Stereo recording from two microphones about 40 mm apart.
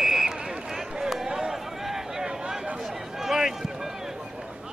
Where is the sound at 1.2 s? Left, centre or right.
Centre.